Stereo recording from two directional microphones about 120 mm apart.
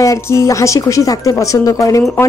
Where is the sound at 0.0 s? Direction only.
25° left (ahead or behind).